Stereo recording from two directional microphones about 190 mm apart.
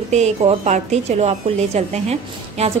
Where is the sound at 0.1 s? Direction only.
35° right (ahead or behind).